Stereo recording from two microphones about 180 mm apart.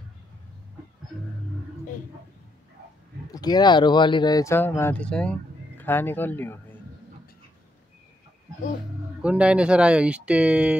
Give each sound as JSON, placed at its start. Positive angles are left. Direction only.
{"t": 3.3, "sound": "speech", "side_deg": 20}
{"t": 9.2, "sound": "speech", "side_deg": -5}